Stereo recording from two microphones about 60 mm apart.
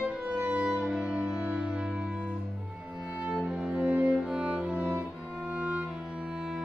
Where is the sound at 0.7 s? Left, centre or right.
Centre.